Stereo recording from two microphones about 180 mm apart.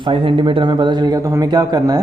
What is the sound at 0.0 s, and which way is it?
A man's voice, 30° right (ahead or behind).